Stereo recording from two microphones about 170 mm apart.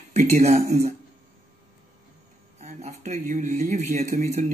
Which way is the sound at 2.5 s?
40° right (ahead or behind).